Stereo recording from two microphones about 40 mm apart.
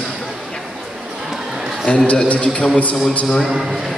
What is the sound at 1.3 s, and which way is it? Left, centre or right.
Basketball bounce, centre.